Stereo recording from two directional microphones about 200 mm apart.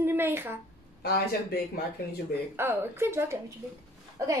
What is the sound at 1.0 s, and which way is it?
Speech, 50° left (ahead or behind).